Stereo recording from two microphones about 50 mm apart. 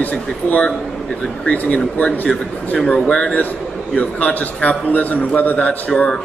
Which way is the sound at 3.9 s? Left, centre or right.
Left.